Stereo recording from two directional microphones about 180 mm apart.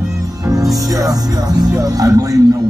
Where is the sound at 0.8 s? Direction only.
20° right (ahead or behind).